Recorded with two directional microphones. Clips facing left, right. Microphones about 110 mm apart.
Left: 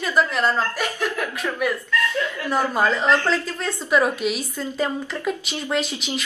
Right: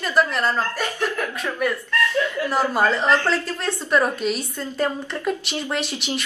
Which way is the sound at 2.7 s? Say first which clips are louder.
Even; centre (ahead or behind).